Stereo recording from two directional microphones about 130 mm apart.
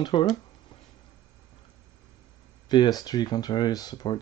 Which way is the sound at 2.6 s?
30° left (ahead or behind).